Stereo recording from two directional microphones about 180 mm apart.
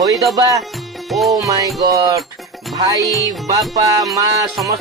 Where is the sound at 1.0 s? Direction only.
Centre (ahead or behind).